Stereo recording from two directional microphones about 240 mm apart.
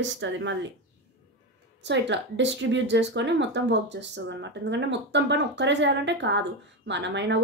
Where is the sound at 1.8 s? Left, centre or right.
Right.